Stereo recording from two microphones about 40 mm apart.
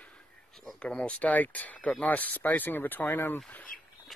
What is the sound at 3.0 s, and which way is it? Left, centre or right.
Speech, left.